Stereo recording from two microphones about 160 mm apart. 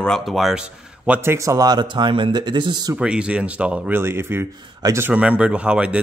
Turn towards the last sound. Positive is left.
turn(degrees=-5)  # may be behind; listen again after turning